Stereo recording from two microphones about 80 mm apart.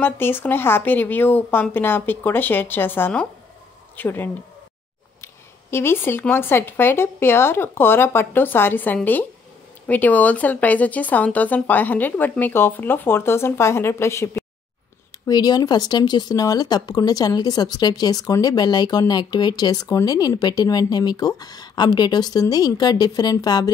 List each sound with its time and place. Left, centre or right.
0.0 s speech: left
15.2 s speech: left